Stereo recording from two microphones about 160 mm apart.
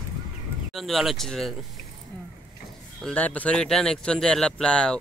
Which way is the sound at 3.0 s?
10° left (ahead or behind).